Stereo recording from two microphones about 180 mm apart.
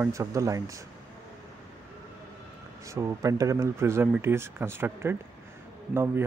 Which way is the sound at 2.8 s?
15° right (ahead or behind).